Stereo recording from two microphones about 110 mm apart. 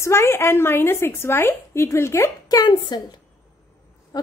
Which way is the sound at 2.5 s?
40° left (ahead or behind).